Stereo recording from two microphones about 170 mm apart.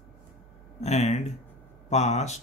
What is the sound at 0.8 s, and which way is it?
Speech, 40° left (ahead or behind).